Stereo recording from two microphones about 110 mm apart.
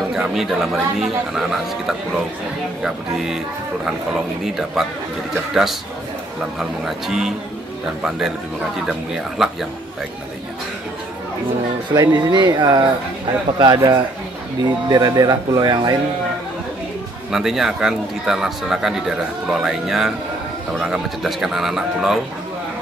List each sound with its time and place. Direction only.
0.1 s speech: 5° right (ahead or behind)
3.8 s speech: 5° right (ahead or behind)
8.7 s speech: 5° right (ahead or behind)
11.9 s speech: 35° right (ahead or behind)
17.3 s speech: 5° right (ahead or behind)